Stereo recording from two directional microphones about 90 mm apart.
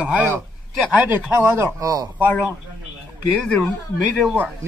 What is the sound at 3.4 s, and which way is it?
Speech, 10° left (ahead or behind).